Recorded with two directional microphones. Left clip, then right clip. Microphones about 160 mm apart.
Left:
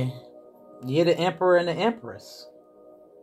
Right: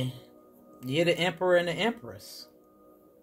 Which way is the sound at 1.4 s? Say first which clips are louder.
Left 4 dB; 40° right (ahead or behind).